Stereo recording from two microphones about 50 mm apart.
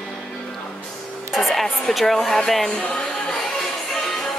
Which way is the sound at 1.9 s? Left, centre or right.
Centre.